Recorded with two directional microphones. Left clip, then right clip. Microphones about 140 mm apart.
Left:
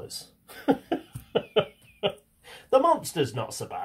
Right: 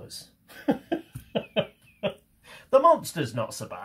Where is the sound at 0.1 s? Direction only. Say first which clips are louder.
Left 2 dB; 50° left (ahead or behind).